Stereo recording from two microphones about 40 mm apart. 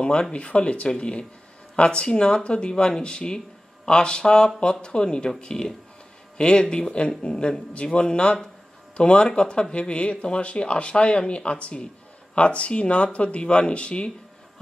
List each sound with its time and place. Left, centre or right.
0.0 s speech: left